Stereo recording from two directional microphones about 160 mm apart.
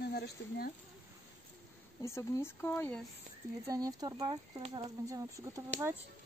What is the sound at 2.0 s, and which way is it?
Speech, 15° left (ahead or behind).